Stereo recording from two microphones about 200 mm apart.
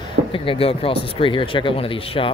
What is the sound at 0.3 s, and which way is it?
Speech, 25° left (ahead or behind).